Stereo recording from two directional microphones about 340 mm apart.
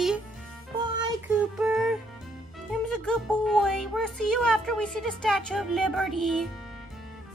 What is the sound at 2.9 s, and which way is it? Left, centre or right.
Speech, centre.